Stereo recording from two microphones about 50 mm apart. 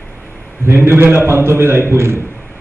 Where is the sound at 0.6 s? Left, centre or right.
Right.